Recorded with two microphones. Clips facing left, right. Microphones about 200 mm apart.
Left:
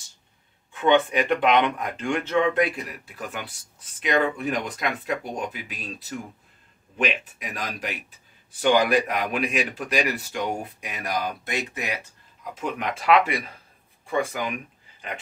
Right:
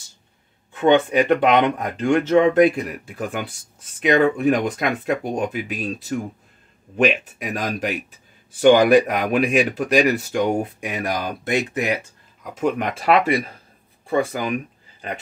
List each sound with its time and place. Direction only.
0.7 s speech: 40° right (ahead or behind)